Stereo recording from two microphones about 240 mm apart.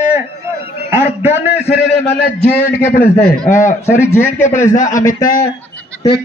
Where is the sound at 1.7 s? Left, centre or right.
Left.